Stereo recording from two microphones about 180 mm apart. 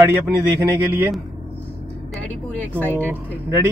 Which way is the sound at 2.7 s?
10° left (ahead or behind).